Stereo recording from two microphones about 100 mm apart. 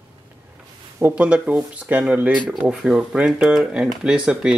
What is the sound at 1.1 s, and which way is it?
Speech, 10° right (ahead or behind).